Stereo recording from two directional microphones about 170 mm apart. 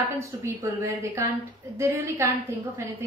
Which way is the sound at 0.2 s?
20° right (ahead or behind).